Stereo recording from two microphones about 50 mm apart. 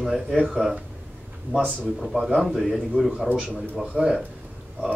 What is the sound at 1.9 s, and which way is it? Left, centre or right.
Speech, centre.